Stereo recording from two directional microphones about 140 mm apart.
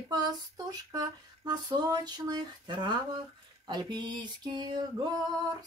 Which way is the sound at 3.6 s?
30° right (ahead or behind).